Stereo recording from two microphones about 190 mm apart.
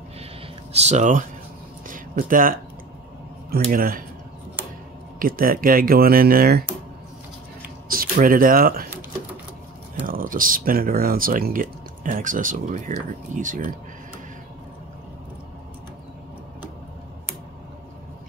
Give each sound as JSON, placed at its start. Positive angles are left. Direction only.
{"t": 0.7, "sound": "speech", "side_deg": -35}
{"t": 1.9, "sound": "a sound", "side_deg": -45}
{"t": 3.7, "sound": "speech", "side_deg": -50}
{"t": 5.2, "sound": "speech", "side_deg": -50}
{"t": 7.9, "sound": "speech", "side_deg": -50}
{"t": 10.0, "sound": "speech", "side_deg": -45}